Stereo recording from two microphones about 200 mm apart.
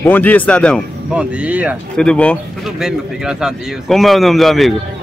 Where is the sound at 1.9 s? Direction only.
5° left (ahead or behind).